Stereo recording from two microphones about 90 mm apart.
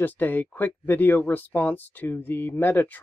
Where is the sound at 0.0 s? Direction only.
20° left (ahead or behind).